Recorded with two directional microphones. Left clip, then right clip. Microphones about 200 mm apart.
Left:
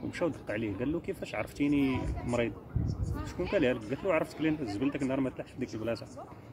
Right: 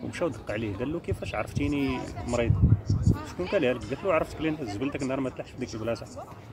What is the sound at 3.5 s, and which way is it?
Speech, 5° right (ahead or behind).